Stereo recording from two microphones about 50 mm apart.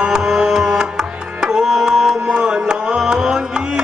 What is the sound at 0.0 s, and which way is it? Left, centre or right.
Music, centre.